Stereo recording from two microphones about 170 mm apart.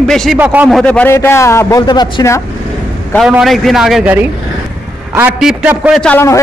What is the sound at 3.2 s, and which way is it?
A man's voice, centre (ahead or behind).